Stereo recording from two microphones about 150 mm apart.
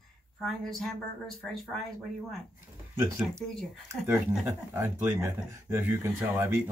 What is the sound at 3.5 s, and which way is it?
Speech, 5° left (ahead or behind).